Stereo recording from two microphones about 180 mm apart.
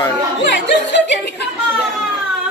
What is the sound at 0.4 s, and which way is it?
Music, 85° left.